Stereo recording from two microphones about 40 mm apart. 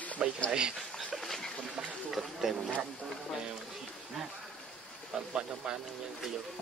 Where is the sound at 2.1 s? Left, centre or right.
Centre.